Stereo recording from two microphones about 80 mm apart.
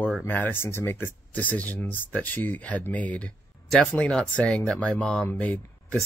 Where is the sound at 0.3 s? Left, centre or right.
Left.